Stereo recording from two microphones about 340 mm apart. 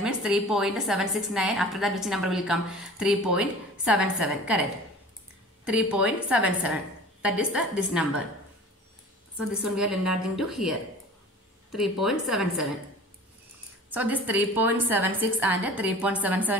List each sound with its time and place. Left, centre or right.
0.0 s a woman's voice: centre
5.7 s a woman's voice: centre
9.5 s a woman's voice: centre
13.8 s a woman's voice: centre